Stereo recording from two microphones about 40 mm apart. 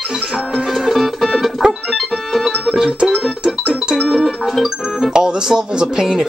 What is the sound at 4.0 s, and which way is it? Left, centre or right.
Music, centre.